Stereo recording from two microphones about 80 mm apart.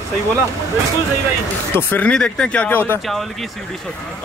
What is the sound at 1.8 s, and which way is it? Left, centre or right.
Speech, left.